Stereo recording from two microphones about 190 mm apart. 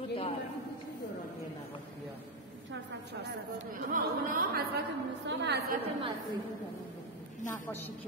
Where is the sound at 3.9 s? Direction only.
45° right (ahead or behind).